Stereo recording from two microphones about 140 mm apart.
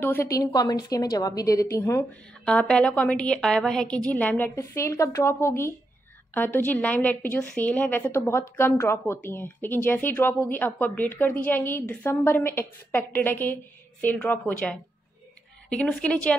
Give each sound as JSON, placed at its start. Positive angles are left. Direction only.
{"t": 0.0, "sound": "a woman's voice", "side_deg": 15}